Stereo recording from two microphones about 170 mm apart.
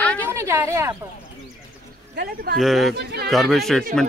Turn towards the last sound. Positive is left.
turn(degrees=0)  # may be behind; listen again after turning